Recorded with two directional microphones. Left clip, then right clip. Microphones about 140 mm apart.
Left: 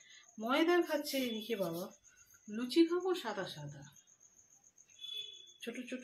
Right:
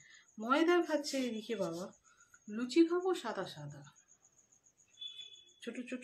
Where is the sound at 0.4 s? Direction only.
25° right (ahead or behind).